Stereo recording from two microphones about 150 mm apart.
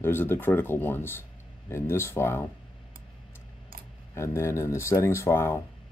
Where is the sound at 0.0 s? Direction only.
15° left (ahead or behind).